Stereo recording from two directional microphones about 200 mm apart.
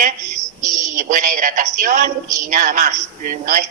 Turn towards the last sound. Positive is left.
turn(degrees=-40)  # may be behind; listen again after turning